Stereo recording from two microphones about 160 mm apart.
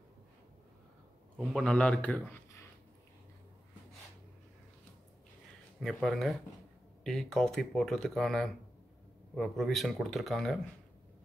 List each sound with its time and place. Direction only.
1.4 s a man's voice: 5° left (ahead or behind)
5.8 s speech: centre (ahead or behind)